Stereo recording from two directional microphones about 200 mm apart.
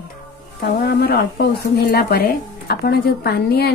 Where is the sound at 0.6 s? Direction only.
50° left (ahead or behind).